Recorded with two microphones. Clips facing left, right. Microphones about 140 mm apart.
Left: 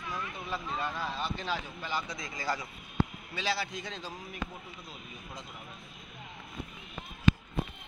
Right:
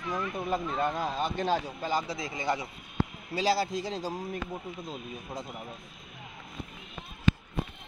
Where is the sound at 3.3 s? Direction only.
40° right (ahead or behind).